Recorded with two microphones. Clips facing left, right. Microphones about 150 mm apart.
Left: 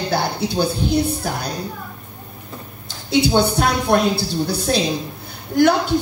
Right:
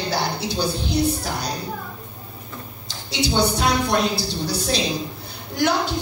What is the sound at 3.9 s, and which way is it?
Speech, 55° left (ahead or behind).